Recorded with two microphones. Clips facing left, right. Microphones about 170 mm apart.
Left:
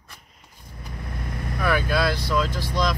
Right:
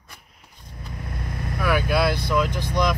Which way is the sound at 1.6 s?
10° right (ahead or behind).